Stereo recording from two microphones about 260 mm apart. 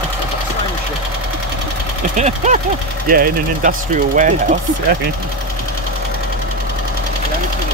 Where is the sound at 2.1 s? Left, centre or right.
Right.